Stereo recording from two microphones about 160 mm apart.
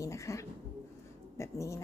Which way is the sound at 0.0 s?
20° left (ahead or behind).